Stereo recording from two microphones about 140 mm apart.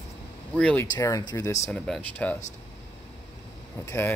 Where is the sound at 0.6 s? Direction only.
10° left (ahead or behind).